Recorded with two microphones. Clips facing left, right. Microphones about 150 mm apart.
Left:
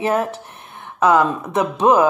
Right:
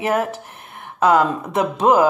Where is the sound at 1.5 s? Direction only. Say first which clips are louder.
Left 1 dB; 25° right (ahead or behind).